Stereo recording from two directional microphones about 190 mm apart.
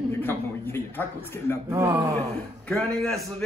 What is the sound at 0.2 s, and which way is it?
A man's voice, 10° left (ahead or behind).